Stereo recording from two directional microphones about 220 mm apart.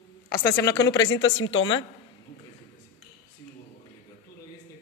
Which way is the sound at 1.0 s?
60° left (ahead or behind).